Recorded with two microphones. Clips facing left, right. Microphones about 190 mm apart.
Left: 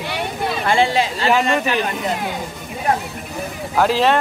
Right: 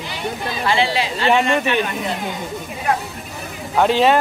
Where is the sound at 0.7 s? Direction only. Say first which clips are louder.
Left 3 dB; 45° left (ahead or behind).